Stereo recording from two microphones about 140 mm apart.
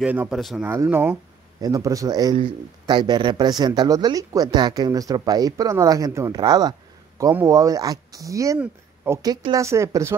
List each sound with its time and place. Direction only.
0.0 s speech: 10° right (ahead or behind)
0.7 s speech: 15° right (ahead or behind)
1.6 s speech: 25° right (ahead or behind)
9.2 s speech: 25° right (ahead or behind)